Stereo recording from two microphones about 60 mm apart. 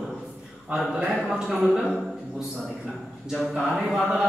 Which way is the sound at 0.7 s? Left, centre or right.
Centre.